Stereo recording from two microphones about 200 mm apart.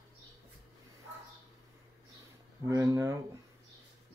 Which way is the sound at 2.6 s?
15° right (ahead or behind).